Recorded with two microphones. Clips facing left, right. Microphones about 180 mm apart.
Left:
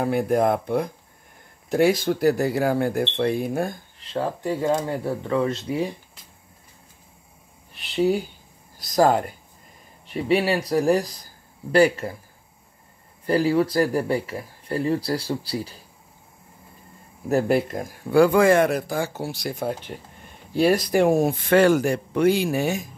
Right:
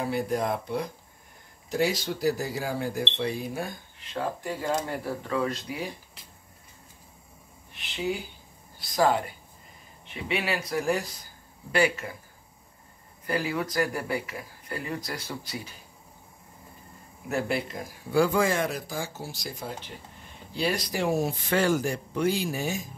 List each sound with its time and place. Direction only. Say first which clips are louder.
0.0 s speech: left 7 dB; 55° left (ahead or behind)
4.0 s speech: left 5 dB; 30° left (ahead or behind)
8.7 s speech: left 5 dB; 40° left (ahead or behind)
13.2 s speech: left 9 dB; 35° left (ahead or behind)
17.3 s speech: left 8 dB; 40° left (ahead or behind); by 22.8 s 65° left (ahead or behind)